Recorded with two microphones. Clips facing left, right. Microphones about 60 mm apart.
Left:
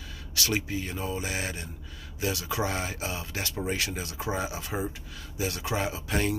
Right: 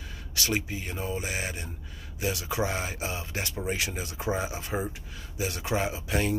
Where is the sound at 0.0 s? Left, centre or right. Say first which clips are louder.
Left 1 dB; right.